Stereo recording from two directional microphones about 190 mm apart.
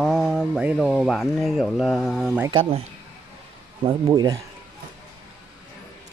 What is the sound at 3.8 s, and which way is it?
Speech, 20° right (ahead or behind).